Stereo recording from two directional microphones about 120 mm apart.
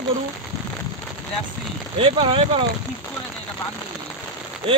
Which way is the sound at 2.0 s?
50° right (ahead or behind).